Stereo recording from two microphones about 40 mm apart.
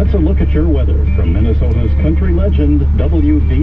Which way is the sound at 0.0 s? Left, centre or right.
Centre.